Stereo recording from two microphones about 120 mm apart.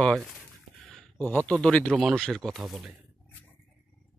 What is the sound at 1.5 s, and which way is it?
Speech, 10° left (ahead or behind).